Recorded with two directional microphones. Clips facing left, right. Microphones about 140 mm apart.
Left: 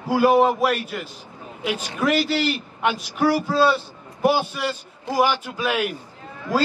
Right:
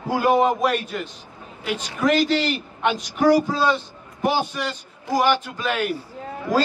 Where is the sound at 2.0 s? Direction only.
10° left (ahead or behind).